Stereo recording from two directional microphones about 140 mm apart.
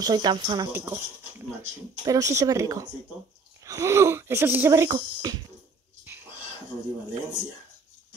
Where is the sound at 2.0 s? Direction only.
25° right (ahead or behind).